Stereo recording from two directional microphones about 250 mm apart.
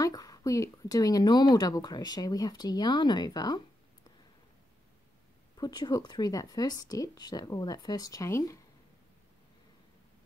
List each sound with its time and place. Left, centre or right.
0.0 s speech: centre
5.6 s speech: centre